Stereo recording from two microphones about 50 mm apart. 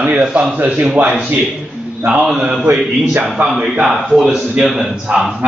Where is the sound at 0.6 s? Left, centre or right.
Right.